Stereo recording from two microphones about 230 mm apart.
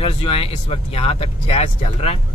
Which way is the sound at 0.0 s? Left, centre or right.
Left.